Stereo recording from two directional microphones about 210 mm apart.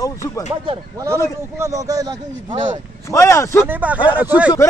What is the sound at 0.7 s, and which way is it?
A man's voice, 15° right (ahead or behind).